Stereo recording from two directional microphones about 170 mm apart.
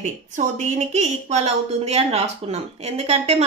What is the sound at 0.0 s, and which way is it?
Speech, 45° right (ahead or behind).